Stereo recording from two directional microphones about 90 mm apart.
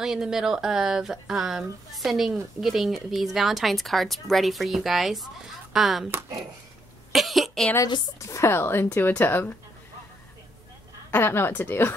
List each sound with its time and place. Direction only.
0.0 s speech: 5° right (ahead or behind)
7.1 s a sound: centre (ahead or behind)
8.2 s a woman's voice: 35° left (ahead or behind)
11.1 s a woman's voice: 25° left (ahead or behind)